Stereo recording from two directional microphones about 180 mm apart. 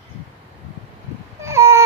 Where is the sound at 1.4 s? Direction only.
15° right (ahead or behind).